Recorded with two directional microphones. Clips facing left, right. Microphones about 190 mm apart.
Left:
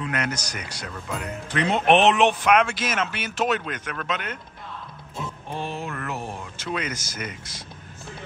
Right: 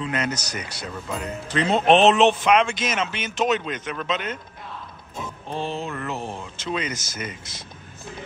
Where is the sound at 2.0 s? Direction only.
15° left (ahead or behind).